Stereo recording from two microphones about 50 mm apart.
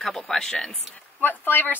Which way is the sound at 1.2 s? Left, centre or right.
Left.